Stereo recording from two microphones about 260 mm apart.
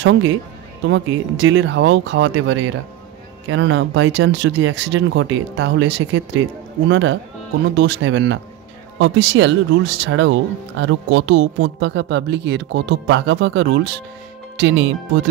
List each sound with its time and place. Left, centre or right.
0.8 s speech: right